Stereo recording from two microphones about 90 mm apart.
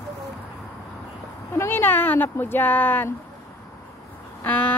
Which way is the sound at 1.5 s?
25° left (ahead or behind).